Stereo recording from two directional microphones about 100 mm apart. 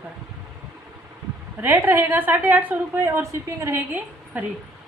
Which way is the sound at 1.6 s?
20° right (ahead or behind).